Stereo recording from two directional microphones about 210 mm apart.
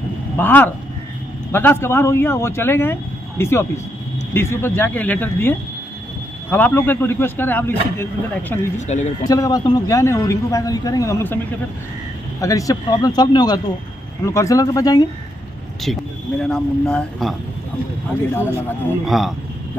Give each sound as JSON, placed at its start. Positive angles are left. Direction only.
{"t": 0.4, "sound": "speech", "side_deg": 10}
{"t": 8.7, "sound": "speech", "side_deg": 35}
{"t": 9.2, "sound": "speech", "side_deg": 15}
{"t": 12.4, "sound": "speech", "side_deg": 15}
{"t": 15.8, "sound": "speech", "side_deg": 0}
{"t": 19.0, "sound": "speech", "side_deg": 0}